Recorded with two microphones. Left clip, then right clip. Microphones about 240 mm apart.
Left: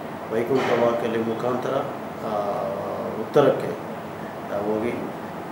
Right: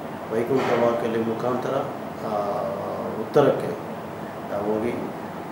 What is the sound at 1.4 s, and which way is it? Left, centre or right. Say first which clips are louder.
Speech: even; left.